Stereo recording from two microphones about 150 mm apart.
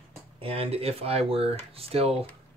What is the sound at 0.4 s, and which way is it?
Speech, 40° right (ahead or behind).